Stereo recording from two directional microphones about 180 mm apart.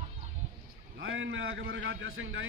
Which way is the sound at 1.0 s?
90° right.